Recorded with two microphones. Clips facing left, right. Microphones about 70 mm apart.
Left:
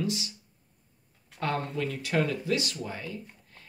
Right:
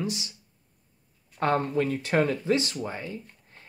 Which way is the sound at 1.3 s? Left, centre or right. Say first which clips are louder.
Right 6 dB; right.